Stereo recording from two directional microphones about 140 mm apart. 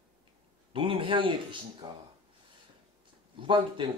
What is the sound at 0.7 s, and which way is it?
Speech, 40° right (ahead or behind).